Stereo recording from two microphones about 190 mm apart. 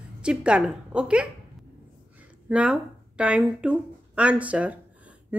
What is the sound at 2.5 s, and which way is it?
A woman's voice, 5° right (ahead or behind).